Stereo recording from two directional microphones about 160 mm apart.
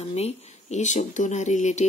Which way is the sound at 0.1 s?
45° left (ahead or behind).